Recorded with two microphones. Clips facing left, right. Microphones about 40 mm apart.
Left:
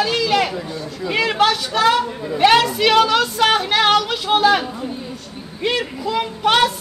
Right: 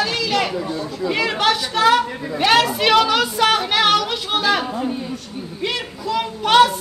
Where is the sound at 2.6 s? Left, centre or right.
Centre.